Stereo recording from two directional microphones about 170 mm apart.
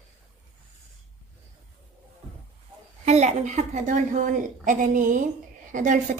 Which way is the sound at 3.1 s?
45° right (ahead or behind).